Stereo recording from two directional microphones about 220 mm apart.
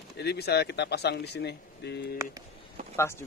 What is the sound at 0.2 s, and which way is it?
Speech, 50° left (ahead or behind).